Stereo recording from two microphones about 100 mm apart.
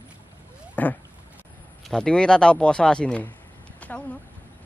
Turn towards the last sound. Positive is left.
turn(degrees=15)  # may be behind; listen again after turning